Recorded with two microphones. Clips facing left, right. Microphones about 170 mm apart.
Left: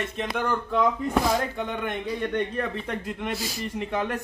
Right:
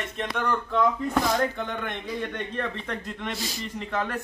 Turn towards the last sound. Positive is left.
turn(degrees=15)  # may be behind; listen again after turning